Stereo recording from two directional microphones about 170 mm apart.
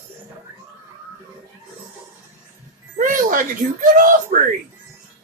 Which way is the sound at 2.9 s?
50° right (ahead or behind).